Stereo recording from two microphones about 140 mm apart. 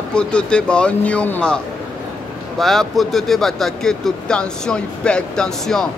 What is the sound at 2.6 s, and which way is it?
Speech, centre (ahead or behind).